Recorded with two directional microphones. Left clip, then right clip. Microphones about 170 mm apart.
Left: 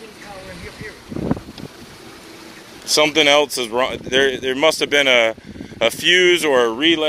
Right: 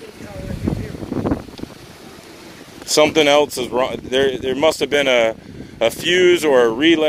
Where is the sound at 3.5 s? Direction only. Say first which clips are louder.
Even; 20° right (ahead or behind).